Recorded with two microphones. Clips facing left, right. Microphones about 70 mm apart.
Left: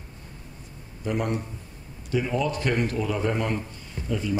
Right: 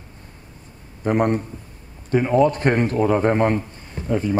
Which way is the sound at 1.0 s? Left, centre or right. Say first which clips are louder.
Right 8 dB; right.